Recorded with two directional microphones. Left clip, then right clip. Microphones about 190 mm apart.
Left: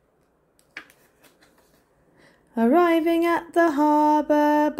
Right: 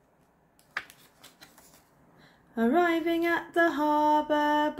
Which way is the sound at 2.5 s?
40° left (ahead or behind).